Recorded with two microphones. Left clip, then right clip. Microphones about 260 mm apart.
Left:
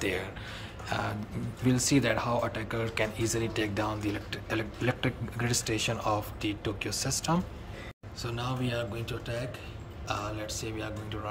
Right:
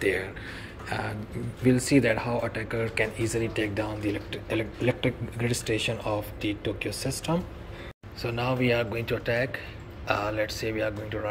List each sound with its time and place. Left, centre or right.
0.0 s speech: centre
5.5 s speech: left
5.9 s speech: centre
6.9 s speech: left
8.2 s a man's voice: centre